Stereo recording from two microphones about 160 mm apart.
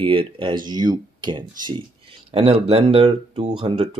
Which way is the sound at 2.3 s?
40° right (ahead or behind).